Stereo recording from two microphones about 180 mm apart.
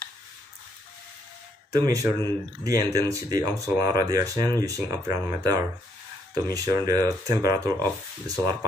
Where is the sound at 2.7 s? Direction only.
20° right (ahead or behind).